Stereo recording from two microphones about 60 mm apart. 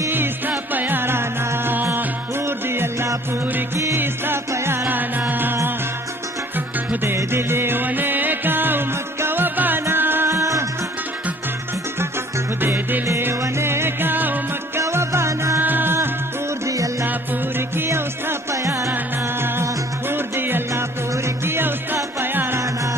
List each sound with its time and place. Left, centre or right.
0.1 s music: right
4.8 s music: right
6.9 s music: right
12.6 s music: right
13.0 s music: right
14.8 s music: right
15.6 s music: right
16.6 s music: right
17.6 s music: right
18.5 s music: right
20.1 s music: right